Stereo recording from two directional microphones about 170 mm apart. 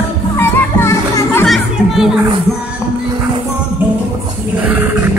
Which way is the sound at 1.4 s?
Centre (ahead or behind).